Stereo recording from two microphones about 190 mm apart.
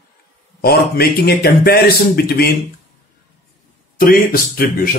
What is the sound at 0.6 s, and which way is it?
A man's voice, 55° left (ahead or behind).